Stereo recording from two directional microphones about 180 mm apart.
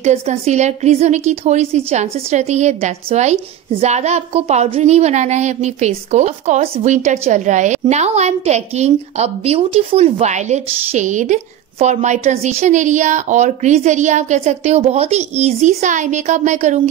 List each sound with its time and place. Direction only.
0.0 s speech: 35° right (ahead or behind)